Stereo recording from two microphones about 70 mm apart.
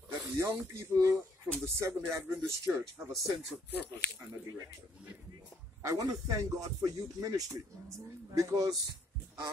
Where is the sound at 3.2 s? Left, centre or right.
Centre.